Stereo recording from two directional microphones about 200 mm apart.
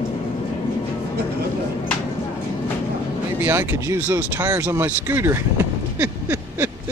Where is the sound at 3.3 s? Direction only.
10° right (ahead or behind).